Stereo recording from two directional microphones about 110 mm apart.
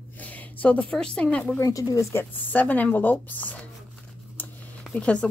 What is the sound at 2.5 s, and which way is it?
Speech, 15° left (ahead or behind).